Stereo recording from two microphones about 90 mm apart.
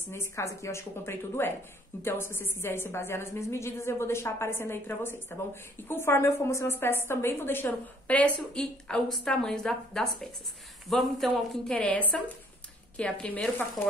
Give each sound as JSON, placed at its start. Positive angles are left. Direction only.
{"t": 0.1, "sound": "a woman's voice", "side_deg": 30}
{"t": 8.5, "sound": "speech", "side_deg": 5}